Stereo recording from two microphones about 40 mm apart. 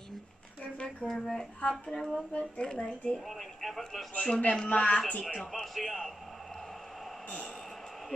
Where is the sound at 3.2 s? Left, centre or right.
Centre.